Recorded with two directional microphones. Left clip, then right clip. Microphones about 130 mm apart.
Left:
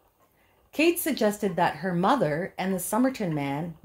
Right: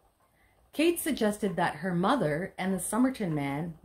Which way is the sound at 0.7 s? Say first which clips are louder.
Left 4 dB; 30° left (ahead or behind).